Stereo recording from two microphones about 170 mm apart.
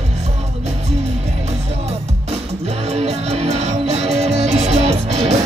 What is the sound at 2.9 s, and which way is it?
Music, 40° right (ahead or behind).